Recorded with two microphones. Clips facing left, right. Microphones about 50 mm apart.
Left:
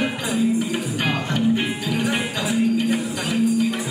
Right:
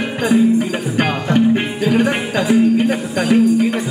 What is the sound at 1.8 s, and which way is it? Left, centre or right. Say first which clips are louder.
Music: right 7 dB; right.